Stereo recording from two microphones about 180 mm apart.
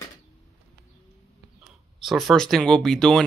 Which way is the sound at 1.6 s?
Centre (ahead or behind).